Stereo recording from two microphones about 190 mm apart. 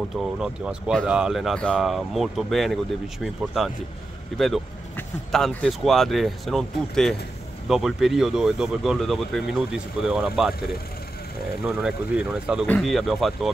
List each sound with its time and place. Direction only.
0.2 s speech: 5° right (ahead or behind)
11.6 s speech: 5° right (ahead or behind)